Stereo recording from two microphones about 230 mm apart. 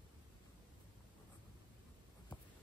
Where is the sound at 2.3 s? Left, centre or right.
Centre.